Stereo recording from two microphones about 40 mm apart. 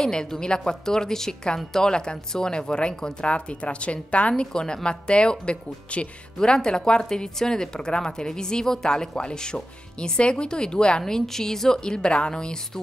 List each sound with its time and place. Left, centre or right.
0.1 s a woman's voice: centre
3.3 s a woman's voice: left
4.5 s a woman's voice: centre